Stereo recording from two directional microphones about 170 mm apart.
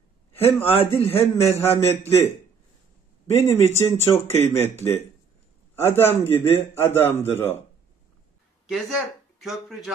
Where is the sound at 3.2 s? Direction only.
15° left (ahead or behind).